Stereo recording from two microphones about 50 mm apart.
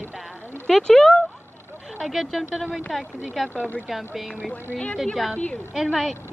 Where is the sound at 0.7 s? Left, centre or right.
Centre.